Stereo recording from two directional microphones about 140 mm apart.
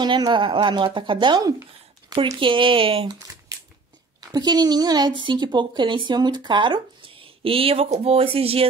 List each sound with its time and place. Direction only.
0.0 s speech: 35° right (ahead or behind)
4.3 s speech: 30° right (ahead or behind)